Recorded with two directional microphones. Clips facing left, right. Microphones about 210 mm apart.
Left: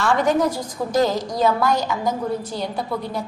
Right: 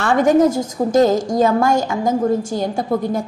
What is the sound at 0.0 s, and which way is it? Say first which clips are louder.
A woman's voice: right 5 dB; 45° right (ahead or behind).